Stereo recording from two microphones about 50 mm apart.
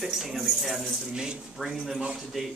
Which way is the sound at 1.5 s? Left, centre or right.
Centre.